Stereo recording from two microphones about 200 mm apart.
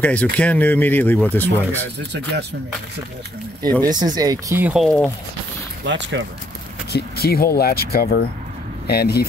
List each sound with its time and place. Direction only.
0.0 s speech: 5° left (ahead or behind)
3.8 s speech: 20° right (ahead or behind)
4.8 s speech: 5° left (ahead or behind)
5.9 s speech: 65° right (ahead or behind)
6.9 s speech: 50° left (ahead or behind)